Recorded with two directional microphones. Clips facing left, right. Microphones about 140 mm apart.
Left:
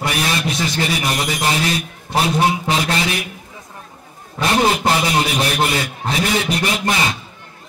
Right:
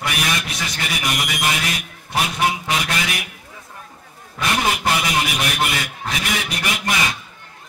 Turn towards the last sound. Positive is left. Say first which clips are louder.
# left 3 dB
turn(degrees=30)  # may be behind; listen again after turning